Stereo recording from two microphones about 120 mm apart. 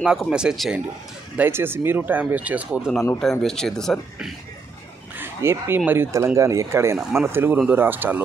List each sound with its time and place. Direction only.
0.0 s speech: 5° right (ahead or behind)
1.3 s speech: 15° right (ahead or behind)
3.2 s speech: 5° left (ahead or behind)
5.1 s crow: 20° right (ahead or behind)
5.9 s speech: 20° right (ahead or behind)